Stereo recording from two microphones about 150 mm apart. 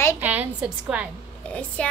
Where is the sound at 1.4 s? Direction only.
10° left (ahead or behind).